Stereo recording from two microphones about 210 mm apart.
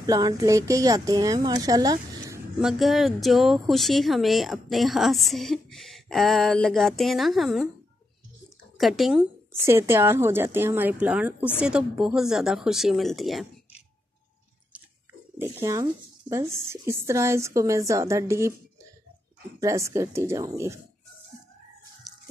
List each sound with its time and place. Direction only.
0.0 s speech: 15° right (ahead or behind)
2.6 s speech: centre (ahead or behind)
8.7 s speech: centre (ahead or behind)
9.6 s speech: 10° right (ahead or behind)
15.3 s speech: 10° right (ahead or behind)
19.6 s speech: 15° right (ahead or behind)